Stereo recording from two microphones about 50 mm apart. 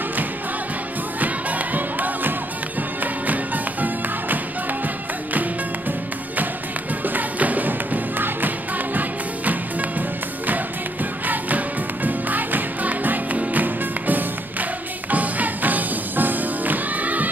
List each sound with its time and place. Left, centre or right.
1.2 s music: right